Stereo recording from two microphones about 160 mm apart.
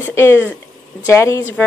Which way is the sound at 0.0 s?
15° left (ahead or behind).